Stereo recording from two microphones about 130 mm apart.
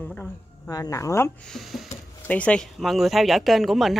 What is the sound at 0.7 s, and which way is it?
Speech, 25° left (ahead or behind).